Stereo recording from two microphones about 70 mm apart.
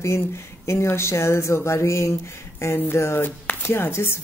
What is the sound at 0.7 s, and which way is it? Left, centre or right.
Speech, left.